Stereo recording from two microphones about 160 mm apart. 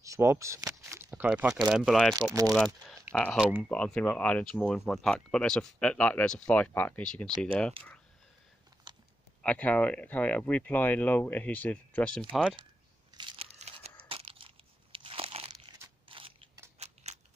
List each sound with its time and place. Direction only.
0.0 s speech: 20° right (ahead or behind); by 7.2 s 5° left (ahead or behind)
7.2 s speech: 30° right (ahead or behind)
8.9 s typing: 25° right (ahead or behind)
9.4 s speech: 10° left (ahead or behind)
13.1 s a sound: 30° right (ahead or behind)
13.6 s crumpling: 35° right (ahead or behind)
16.1 s mechanisms: 35° right (ahead or behind)
16.7 s scissors: 45° right (ahead or behind)